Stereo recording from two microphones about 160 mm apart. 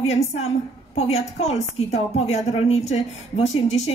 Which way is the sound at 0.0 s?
40° left (ahead or behind).